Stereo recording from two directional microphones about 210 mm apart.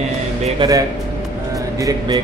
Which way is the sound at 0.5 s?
15° right (ahead or behind).